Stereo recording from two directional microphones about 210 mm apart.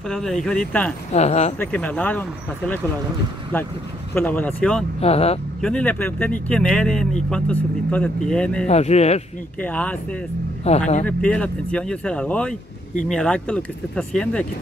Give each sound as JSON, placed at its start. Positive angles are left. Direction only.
{"t": 0.1, "sound": "speech", "side_deg": 0}
{"t": 1.1, "sound": "speech", "side_deg": 30}
{"t": 1.6, "sound": "speech", "side_deg": 5}
{"t": 5.0, "sound": "speech", "side_deg": 30}
{"t": 5.6, "sound": "speech", "side_deg": 5}
{"t": 8.6, "sound": "speech", "side_deg": 30}
{"t": 9.6, "sound": "speech", "side_deg": 5}
{"t": 10.6, "sound": "speech", "side_deg": 30}
{"t": 11.1, "sound": "speech", "side_deg": 5}